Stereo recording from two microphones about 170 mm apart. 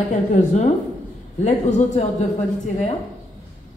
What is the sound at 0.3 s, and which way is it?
A man's voice, 45° left (ahead or behind).